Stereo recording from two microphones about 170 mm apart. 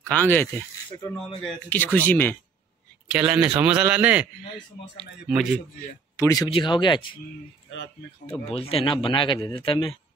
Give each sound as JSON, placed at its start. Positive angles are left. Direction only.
{"t": 0.1, "sound": "speech", "side_deg": 10}
{"t": 3.1, "sound": "a man's voice", "side_deg": -5}
{"t": 6.1, "sound": "speech", "side_deg": 20}
{"t": 8.3, "sound": "speech", "side_deg": 35}